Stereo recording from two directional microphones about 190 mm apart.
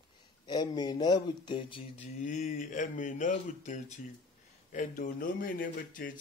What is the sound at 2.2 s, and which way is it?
Speech, 40° left (ahead or behind).